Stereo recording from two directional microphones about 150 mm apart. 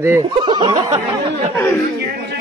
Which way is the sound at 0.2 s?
30° right (ahead or behind).